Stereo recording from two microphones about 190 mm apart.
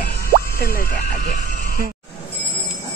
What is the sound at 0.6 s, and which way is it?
Speech, 50° left (ahead or behind).